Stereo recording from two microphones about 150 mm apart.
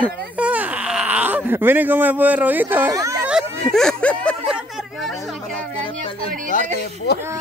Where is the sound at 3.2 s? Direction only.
Centre (ahead or behind).